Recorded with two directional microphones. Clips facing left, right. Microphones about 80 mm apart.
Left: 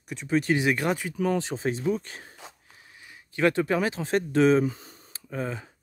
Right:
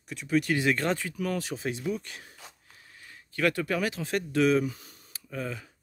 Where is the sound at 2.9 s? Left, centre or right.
Centre.